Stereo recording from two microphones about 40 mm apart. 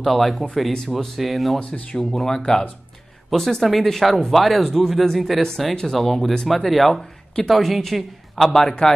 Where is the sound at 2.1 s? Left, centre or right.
Centre.